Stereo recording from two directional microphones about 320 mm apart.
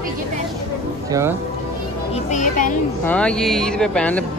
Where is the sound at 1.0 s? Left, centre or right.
Centre.